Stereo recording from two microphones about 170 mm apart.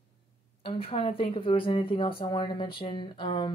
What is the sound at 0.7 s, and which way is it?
A woman's voice, 35° left (ahead or behind).